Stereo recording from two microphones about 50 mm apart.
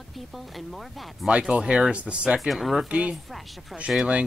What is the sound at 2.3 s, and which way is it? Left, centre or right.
Speech, centre.